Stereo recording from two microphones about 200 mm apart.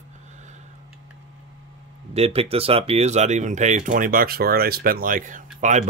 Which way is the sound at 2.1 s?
30° right (ahead or behind).